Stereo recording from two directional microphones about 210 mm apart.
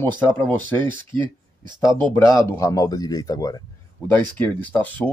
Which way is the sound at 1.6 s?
20° right (ahead or behind).